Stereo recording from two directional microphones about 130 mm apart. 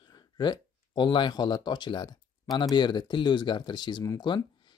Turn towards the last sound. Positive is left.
turn(degrees=30)  # may be behind; listen again after turning